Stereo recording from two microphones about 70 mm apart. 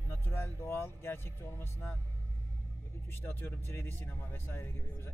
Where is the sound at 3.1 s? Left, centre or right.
Left.